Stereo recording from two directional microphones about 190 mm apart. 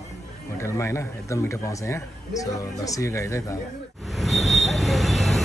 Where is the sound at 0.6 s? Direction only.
15° left (ahead or behind).